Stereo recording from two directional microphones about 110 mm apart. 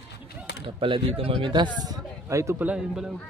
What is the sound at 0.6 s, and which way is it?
Speech, 50° right (ahead or behind).